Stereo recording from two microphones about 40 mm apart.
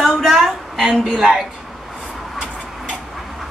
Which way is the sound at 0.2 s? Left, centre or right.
Centre.